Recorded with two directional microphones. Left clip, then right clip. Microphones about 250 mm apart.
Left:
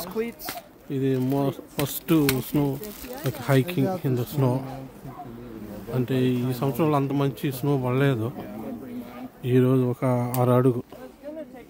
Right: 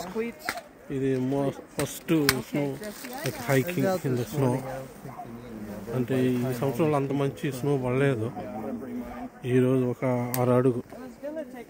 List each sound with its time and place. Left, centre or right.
0.2 s speech: left
0.8 s speech: centre
5.9 s speech: centre
9.4 s speech: centre